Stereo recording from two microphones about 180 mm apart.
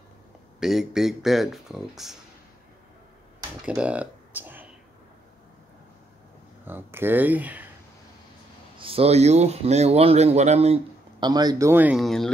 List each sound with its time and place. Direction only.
0.6 s speech: centre (ahead or behind)
3.6 s speech: 5° right (ahead or behind)
6.6 s speech: 10° right (ahead or behind)
8.7 s speech: 30° right (ahead or behind); by 12.0 s 10° right (ahead or behind)
12.0 s speech: centre (ahead or behind)